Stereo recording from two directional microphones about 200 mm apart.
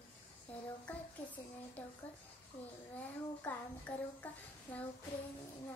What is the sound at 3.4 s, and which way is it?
Child singing, 10° left (ahead or behind).